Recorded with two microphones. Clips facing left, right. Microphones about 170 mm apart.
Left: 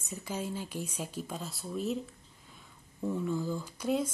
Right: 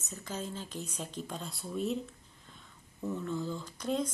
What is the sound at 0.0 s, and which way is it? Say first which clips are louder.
A woman's voice: left 3 dB; 10° left (ahead or behind).